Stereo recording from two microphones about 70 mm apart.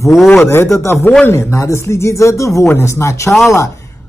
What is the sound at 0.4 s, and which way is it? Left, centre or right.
Speech, left.